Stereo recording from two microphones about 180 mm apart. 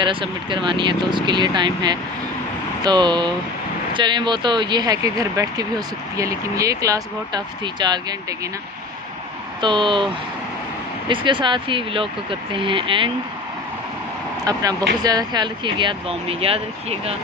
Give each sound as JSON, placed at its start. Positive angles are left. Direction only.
{"t": 0.0, "sound": "speech", "side_deg": -25}
{"t": 9.6, "sound": "speech", "side_deg": -25}
{"t": 11.1, "sound": "speech", "side_deg": -25}
{"t": 14.4, "sound": "speech", "side_deg": -20}